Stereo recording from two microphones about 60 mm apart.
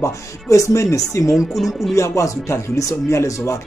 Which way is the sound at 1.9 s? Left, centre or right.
Left.